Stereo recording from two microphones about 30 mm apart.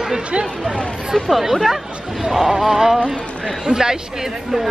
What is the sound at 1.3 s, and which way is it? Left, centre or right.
Speech, centre.